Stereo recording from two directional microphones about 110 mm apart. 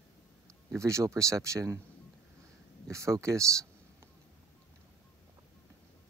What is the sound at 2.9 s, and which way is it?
Speech, 25° right (ahead or behind).